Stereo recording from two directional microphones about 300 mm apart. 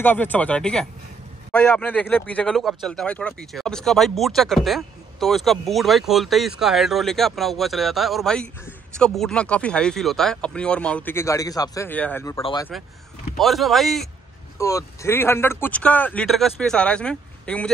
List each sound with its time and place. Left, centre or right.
0.0 s speech: centre
12.4 s speech: centre
13.4 s speech: centre